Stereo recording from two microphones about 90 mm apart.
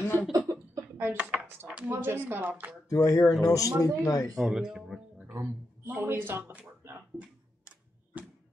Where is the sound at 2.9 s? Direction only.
40° left (ahead or behind).